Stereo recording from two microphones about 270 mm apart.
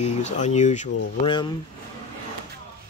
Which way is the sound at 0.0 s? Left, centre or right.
Left.